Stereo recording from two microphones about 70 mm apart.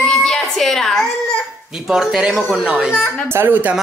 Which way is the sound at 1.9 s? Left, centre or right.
Centre.